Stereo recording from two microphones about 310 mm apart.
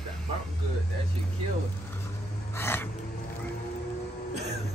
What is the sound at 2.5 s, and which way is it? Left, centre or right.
Speech, centre.